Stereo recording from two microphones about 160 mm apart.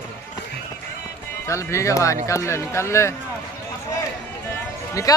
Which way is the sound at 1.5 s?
20° left (ahead or behind).